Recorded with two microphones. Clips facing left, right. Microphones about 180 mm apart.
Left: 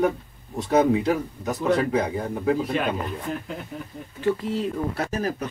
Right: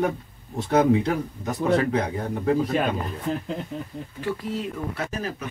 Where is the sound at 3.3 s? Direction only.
30° right (ahead or behind).